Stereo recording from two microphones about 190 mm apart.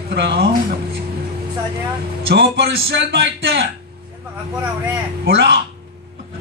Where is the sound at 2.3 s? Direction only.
60° right (ahead or behind).